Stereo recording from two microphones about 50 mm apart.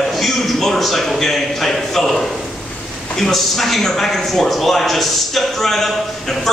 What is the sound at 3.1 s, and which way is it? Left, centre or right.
A man's voice, centre.